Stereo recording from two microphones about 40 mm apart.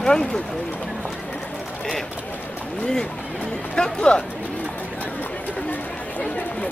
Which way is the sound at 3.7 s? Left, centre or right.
Left.